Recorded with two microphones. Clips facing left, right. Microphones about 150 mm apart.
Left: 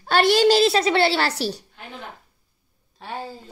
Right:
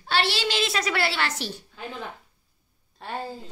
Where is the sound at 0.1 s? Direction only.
45° left (ahead or behind).